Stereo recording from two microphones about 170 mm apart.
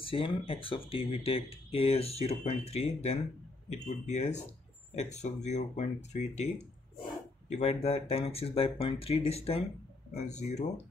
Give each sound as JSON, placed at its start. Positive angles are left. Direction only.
{"t": 0.0, "sound": "speech", "side_deg": 30}